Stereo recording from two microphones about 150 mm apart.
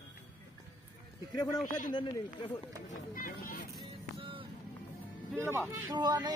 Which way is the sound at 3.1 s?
70° left (ahead or behind).